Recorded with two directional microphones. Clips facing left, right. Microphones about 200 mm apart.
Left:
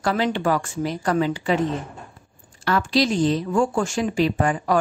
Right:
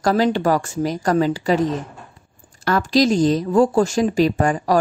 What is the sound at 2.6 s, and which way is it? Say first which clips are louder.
A woman's voice: right 4 dB; 45° right (ahead or behind).